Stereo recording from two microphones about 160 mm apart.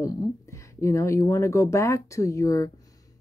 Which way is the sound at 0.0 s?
20° left (ahead or behind).